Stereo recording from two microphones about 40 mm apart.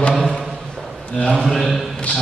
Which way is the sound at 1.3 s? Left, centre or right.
Centre.